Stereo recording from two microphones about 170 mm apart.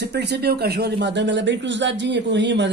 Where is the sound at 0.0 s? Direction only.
75° right (ahead or behind).